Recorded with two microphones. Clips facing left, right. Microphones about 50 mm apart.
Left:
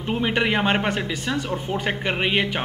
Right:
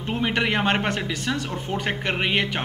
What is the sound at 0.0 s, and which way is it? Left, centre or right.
A man's voice, centre.